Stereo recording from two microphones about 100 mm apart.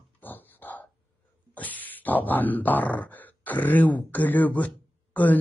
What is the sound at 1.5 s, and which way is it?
Speech, 15° left (ahead or behind).